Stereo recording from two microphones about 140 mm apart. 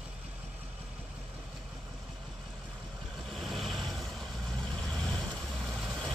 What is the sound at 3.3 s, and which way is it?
Vehicle, centre (ahead or behind).